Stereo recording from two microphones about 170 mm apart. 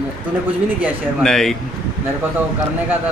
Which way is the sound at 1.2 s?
5° left (ahead or behind).